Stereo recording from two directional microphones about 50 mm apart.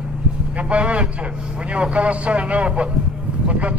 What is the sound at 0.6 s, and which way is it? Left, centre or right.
A man's voice, right.